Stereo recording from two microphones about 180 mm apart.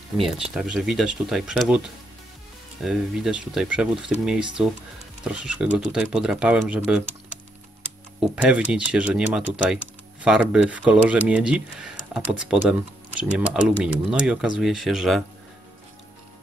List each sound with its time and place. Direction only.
0.2 s speech: centre (ahead or behind)
2.8 s speech: 5° right (ahead or behind)
8.2 s speech: 5° right (ahead or behind)